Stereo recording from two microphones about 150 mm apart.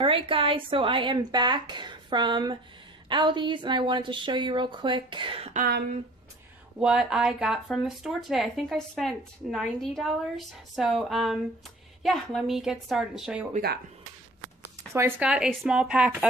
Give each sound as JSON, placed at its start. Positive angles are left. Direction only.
{"t": 0.0, "sound": "speech", "side_deg": -35}
{"t": 6.8, "sound": "speech", "side_deg": -5}
{"t": 14.9, "sound": "speech", "side_deg": -15}